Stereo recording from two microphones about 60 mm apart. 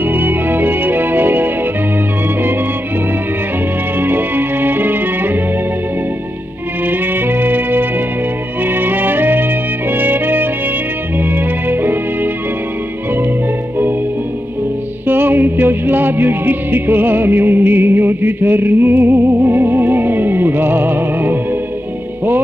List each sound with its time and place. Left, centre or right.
0.0 s music: right
4.0 s music: right
6.9 s music: right
11.1 s organ: right
15.0 s music: right